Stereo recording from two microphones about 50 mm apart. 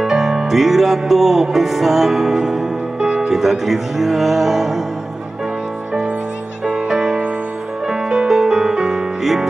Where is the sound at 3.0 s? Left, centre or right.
Centre.